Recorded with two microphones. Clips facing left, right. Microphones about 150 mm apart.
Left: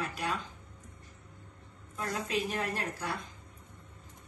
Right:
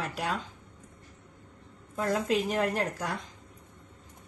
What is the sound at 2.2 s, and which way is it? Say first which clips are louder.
Speech: right 6 dB; 90° right.